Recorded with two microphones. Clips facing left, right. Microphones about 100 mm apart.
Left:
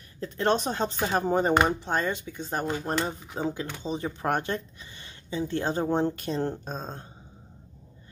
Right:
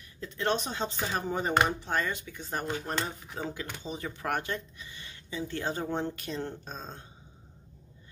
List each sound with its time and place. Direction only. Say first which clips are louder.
0.2 s speech: left 5 dB; 40° left (ahead or behind)
1.2 s speech: left 4 dB; 40° left (ahead or behind)